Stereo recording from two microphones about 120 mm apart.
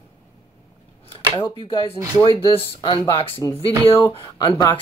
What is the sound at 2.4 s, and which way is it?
Speech, 50° left (ahead or behind).